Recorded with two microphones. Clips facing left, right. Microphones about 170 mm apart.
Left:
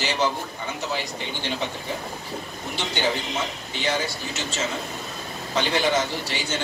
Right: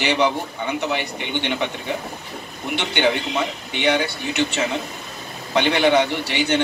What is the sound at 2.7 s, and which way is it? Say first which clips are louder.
Speech: right 5 dB; 65° right (ahead or behind).